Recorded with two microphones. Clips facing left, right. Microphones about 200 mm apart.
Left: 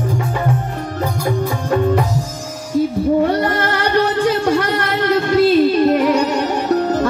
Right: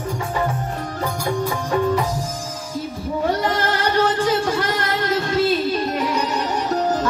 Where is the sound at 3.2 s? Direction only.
65° left (ahead or behind).